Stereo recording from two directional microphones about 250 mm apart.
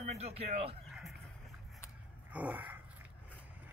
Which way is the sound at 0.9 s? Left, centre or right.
Centre.